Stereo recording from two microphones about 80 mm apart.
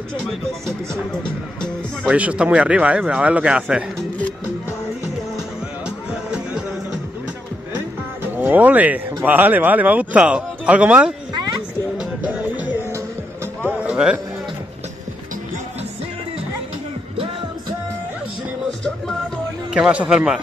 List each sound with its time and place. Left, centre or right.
0.5 s speech: centre
2.0 s speech: centre
5.9 s music: centre
8.2 s speech: right
12.0 s music: centre
13.6 s music: left
13.8 s music: centre
19.7 s speech: centre